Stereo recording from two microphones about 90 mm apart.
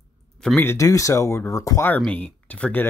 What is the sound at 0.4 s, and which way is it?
Speech, 5° left (ahead or behind).